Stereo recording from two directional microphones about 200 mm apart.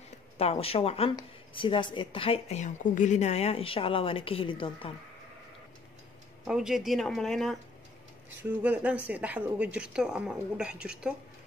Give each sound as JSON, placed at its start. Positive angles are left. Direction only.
{"t": 0.4, "sound": "speech", "side_deg": 30}
{"t": 6.4, "sound": "speech", "side_deg": 0}